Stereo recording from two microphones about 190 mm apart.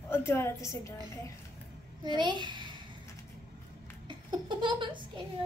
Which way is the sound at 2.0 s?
25° right (ahead or behind).